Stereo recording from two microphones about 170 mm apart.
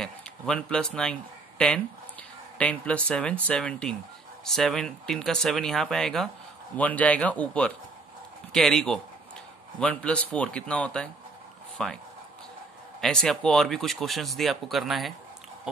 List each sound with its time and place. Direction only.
0.0 s a sound: 5° left (ahead or behind)
2.5 s speech: 5° left (ahead or behind)
13.0 s speech: 5° left (ahead or behind)